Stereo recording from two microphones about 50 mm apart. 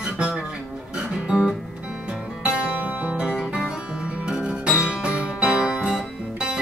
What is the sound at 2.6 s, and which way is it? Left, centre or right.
Music, right.